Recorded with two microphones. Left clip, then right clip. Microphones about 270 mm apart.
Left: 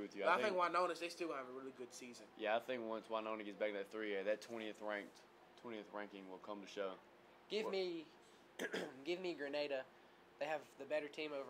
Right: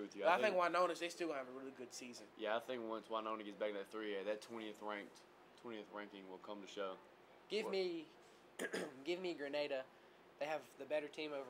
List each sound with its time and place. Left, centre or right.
0.2 s speech: right
2.3 s speech: left
7.7 s speech: centre